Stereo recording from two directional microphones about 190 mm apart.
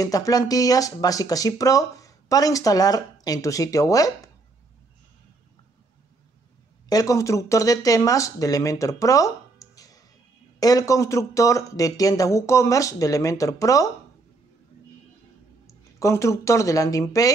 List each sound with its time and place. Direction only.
0.0 s speech: 20° left (ahead or behind)
6.9 s speech: 20° left (ahead or behind)
15.6 s speech: 15° left (ahead or behind)